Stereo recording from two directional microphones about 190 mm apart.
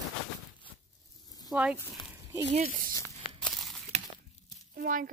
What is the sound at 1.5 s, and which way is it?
Speech, 5° right (ahead or behind).